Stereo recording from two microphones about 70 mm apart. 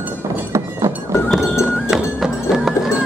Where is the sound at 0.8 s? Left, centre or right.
Right.